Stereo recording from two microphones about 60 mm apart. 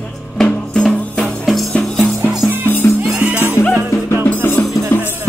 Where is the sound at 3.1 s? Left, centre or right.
Right.